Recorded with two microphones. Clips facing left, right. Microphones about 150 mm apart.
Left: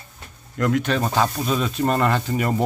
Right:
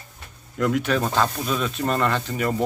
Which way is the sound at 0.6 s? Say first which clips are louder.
Left 1 dB; 5° right (ahead or behind).